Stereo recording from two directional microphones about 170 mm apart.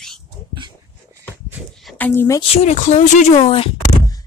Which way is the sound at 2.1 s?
15° left (ahead or behind).